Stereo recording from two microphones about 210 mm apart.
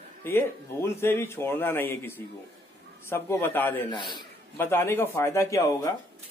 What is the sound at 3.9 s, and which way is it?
Speech, 20° left (ahead or behind).